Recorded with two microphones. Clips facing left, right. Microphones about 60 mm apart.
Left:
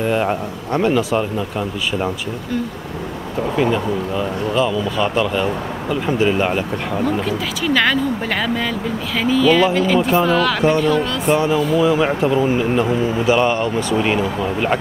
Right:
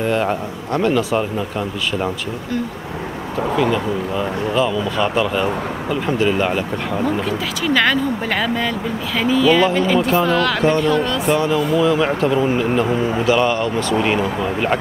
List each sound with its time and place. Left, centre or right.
0.0 s speech: centre
0.7 s speech: centre
0.9 s speech: centre
4.2 s speech: centre
6.1 s speech: centre
7.0 s speech: centre
11.3 s speech: centre
13.2 s speech: centre
13.9 s speech: centre